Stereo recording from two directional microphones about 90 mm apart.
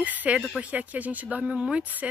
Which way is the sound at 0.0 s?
15° right (ahead or behind).